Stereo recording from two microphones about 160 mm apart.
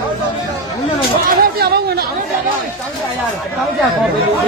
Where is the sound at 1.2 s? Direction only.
75° right (ahead or behind).